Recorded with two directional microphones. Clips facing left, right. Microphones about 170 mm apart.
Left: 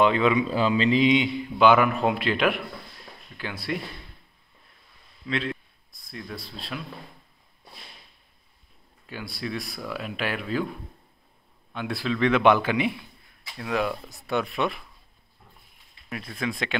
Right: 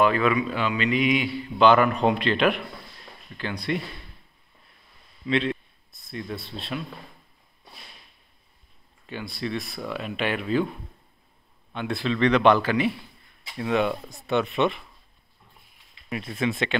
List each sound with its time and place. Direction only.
0.0 s a man's voice: 20° left (ahead or behind)
0.5 s a man's voice: 35° left (ahead or behind); by 3.8 s 5° left (ahead or behind)
5.2 s a man's voice: centre (ahead or behind)
9.0 s speech: 5° left (ahead or behind)
11.7 s a man's voice: centre (ahead or behind)
13.6 s speech: centre (ahead or behind)
16.1 s speech: 5° right (ahead or behind)